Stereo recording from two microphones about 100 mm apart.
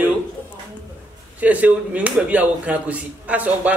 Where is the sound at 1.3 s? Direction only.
15° right (ahead or behind).